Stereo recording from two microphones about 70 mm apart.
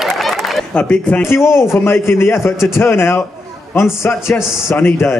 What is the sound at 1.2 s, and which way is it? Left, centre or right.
A man's voice, left.